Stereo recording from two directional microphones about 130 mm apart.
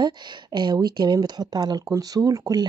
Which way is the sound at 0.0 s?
35° right (ahead or behind).